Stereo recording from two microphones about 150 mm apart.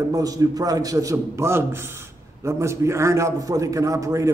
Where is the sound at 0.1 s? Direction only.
25° right (ahead or behind).